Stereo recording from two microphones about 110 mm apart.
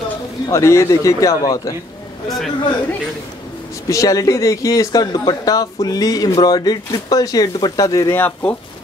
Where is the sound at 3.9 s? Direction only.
30° left (ahead or behind).